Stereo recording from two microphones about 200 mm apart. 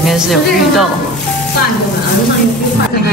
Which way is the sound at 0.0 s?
Centre (ahead or behind).